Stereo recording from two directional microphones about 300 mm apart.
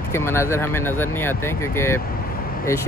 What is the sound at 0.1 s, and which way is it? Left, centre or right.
Speech, centre.